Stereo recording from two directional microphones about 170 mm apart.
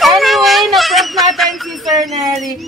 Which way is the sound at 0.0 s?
Centre (ahead or behind).